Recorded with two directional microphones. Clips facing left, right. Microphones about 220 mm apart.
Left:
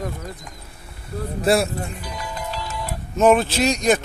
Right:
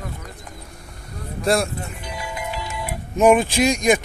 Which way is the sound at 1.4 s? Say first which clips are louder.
Left 1 dB; 5° left (ahead or behind).